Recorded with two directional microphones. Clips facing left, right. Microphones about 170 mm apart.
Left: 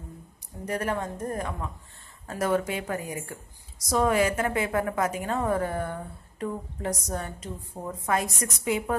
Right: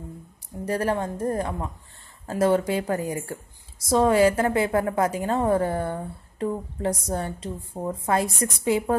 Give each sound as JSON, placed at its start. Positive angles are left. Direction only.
{"t": 0.7, "sound": "a woman's voice", "side_deg": -30}